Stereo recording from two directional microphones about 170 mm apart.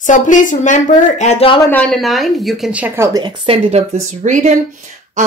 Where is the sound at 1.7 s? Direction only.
5° left (ahead or behind); by 3.2 s 15° right (ahead or behind).